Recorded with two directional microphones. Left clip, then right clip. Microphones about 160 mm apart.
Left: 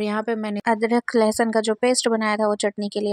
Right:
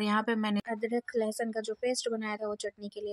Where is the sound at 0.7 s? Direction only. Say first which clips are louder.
Left 13 dB; 45° left (ahead or behind).